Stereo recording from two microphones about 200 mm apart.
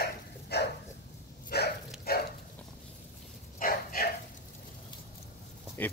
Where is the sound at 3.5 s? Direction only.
45° left (ahead or behind).